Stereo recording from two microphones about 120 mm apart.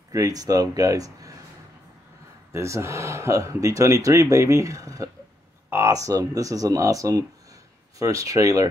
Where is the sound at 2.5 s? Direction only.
25° right (ahead or behind).